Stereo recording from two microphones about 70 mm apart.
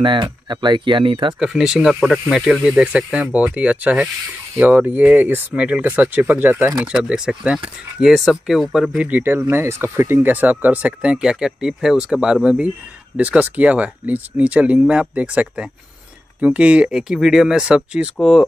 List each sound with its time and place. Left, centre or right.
0.2 s speech: right
1.4 s speech: centre; by 6.7 s right
6.8 s speech: centre
9.0 s speech: right
9.5 s speech: right
10.2 s speech: right